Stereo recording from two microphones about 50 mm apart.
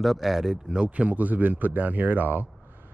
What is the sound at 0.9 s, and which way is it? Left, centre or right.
Speech, right.